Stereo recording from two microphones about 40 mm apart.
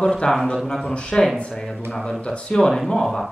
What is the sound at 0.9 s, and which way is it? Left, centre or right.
Speech, left.